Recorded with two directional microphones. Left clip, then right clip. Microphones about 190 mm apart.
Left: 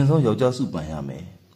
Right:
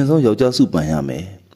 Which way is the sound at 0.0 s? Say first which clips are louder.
Right 6 dB; 40° right (ahead or behind).